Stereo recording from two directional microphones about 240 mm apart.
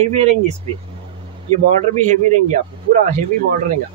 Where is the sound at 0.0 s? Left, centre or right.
Right.